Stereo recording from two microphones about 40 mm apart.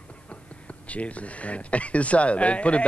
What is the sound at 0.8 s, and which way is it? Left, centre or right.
Speech, left.